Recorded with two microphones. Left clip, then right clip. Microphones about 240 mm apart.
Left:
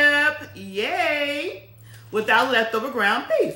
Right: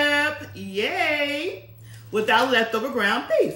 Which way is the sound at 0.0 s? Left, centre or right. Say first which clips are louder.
Left 3 dB; centre.